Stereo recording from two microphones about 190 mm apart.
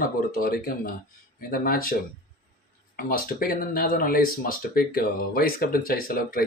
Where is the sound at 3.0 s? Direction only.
50° left (ahead or behind).